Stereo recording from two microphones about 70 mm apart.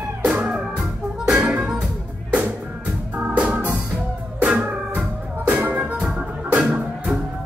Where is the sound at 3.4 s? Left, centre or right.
Right.